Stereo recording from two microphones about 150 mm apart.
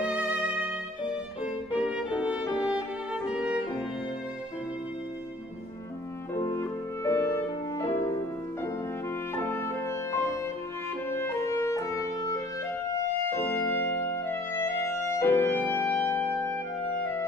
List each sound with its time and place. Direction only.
0.0 s music: 10° right (ahead or behind)
1.4 s music: 10° right (ahead or behind)
6.3 s music: 20° left (ahead or behind)
9.3 s music: 15° left (ahead or behind)
11.1 s clarinet: 15° left (ahead or behind)
12.9 s music: 15° left (ahead or behind)